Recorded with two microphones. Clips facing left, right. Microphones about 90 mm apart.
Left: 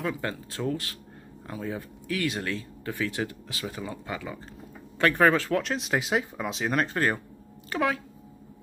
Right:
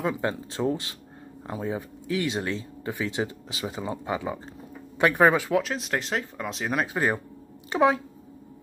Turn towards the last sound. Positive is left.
turn(degrees=-20)  # may be behind; listen again after turning